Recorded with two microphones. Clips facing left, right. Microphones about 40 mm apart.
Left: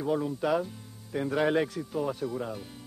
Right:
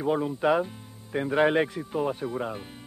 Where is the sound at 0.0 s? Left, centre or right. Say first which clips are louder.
Right 3 dB; right.